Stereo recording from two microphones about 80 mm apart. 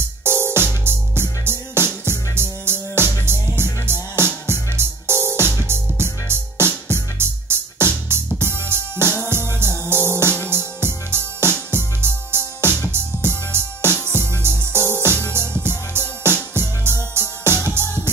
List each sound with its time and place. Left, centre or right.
0.2 s music: right